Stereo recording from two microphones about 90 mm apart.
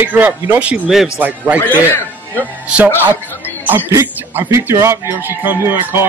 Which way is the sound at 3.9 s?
25° right (ahead or behind).